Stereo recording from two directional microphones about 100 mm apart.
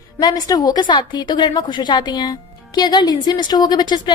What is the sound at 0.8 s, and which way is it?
Speech, 50° left (ahead or behind).